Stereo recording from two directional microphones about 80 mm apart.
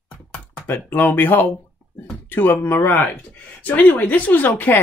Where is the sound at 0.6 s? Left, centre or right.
Left.